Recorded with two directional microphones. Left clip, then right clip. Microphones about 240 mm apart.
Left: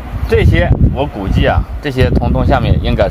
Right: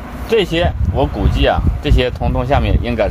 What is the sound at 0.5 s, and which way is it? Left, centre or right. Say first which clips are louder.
Speech: left 1 dB; centre.